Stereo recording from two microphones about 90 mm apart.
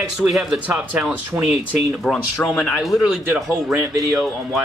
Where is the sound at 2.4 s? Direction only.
15° left (ahead or behind).